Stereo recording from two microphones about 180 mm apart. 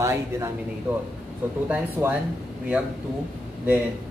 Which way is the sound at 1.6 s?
5° right (ahead or behind).